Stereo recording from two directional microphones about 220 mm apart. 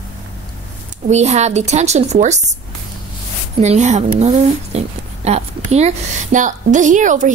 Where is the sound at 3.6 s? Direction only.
30° right (ahead or behind).